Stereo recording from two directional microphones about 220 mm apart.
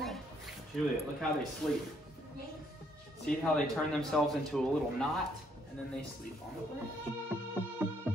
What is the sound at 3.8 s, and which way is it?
A man's voice, centre (ahead or behind).